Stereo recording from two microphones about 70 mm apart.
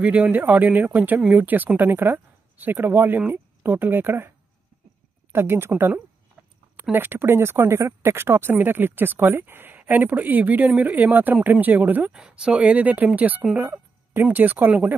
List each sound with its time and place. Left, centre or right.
0.0 s speech: right
5.3 s speech: right
6.8 s speech: right
12.1 s speech: centre
13.6 s music: right
14.3 s speech: right